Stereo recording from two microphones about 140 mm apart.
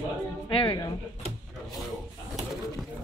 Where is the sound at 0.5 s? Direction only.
35° left (ahead or behind).